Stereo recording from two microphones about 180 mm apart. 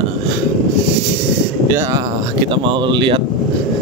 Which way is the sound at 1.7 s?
15° right (ahead or behind).